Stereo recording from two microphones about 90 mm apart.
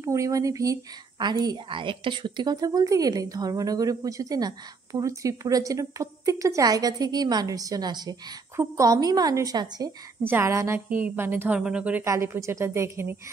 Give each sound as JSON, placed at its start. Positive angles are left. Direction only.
{"t": 0.0, "sound": "a woman's voice", "side_deg": -35}
{"t": 1.7, "sound": "a woman's voice", "side_deg": -70}
{"t": 8.5, "sound": "a woman's voice", "side_deg": -40}
{"t": 10.2, "sound": "a woman's voice", "side_deg": -25}
{"t": 10.9, "sound": "a woman's voice", "side_deg": -20}
{"t": 12.0, "sound": "a woman's voice", "side_deg": -30}